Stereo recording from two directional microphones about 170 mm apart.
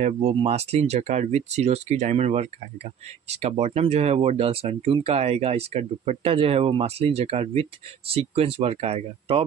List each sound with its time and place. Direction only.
0.3 s speech: 35° right (ahead or behind)